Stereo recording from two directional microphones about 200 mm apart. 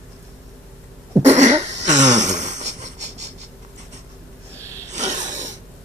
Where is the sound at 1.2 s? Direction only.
35° right (ahead or behind).